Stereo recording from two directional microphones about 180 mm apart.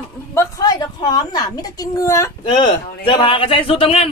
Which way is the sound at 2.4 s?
30° left (ahead or behind).